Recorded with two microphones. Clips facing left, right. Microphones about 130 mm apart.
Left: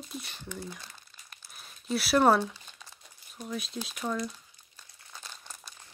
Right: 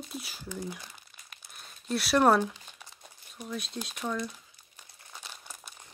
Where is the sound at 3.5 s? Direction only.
Centre (ahead or behind).